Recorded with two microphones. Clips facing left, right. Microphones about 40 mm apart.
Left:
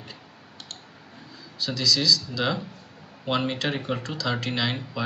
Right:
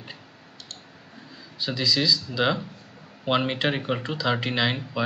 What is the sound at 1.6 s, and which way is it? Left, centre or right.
Speech, centre.